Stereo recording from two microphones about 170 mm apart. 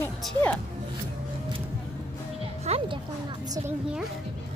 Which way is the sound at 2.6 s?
35° right (ahead or behind).